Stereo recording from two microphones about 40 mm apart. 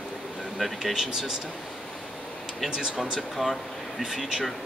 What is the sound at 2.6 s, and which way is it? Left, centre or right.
Speech, centre.